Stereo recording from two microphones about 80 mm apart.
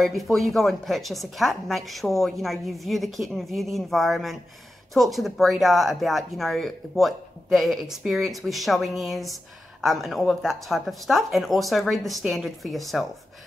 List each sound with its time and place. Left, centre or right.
0.0 s a woman's voice: centre